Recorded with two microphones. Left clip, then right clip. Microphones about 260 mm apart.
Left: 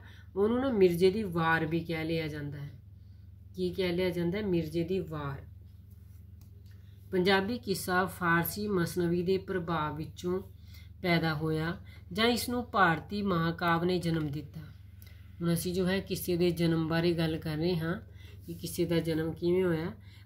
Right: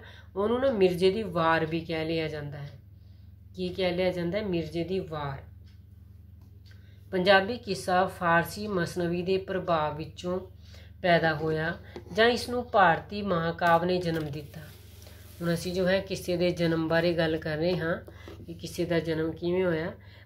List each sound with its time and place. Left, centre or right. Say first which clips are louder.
0.0 s a woman's voice: even; centre
7.1 s a woman's voice: right 6 dB; centre
15.4 s a woman's voice: right 4 dB; centre